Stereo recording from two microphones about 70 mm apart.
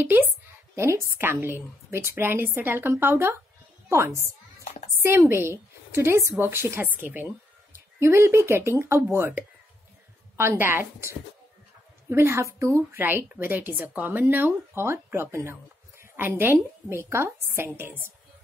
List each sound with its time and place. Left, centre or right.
0.0 s speech: right
0.7 s a woman's voice: right
6.9 s a woman's voice: right
12.9 s a woman's voice: right
14.7 s a woman's voice: right